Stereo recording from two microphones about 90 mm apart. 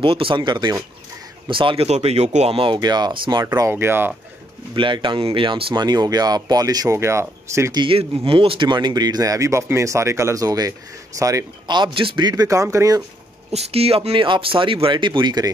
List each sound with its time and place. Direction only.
0.0 s speech: 80° right; by 0.7 s 60° right (ahead or behind)
1.5 s speech: 75° right (ahead or behind)
2.8 s speech: 50° right (ahead or behind)
3.7 s speech: 25° right (ahead or behind)
4.7 s speech: 65° right (ahead or behind)
5.9 s speech: 45° right (ahead or behind)
7.7 s speech: 80° right; by 11.4 s 35° right (ahead or behind)
11.6 s speech: 60° right (ahead or behind); by 12.2 s 75° right (ahead or behind)
12.2 s speech: 55° right (ahead or behind)
12.7 s speech: 40° right (ahead or behind)
13.7 s speech: 90° right; by 15.4 s 60° right (ahead or behind)